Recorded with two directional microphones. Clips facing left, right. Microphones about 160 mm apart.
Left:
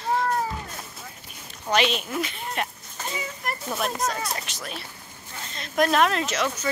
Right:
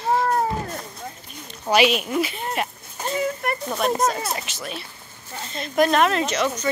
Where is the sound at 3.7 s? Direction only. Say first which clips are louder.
Right 5 dB; centre (ahead or behind).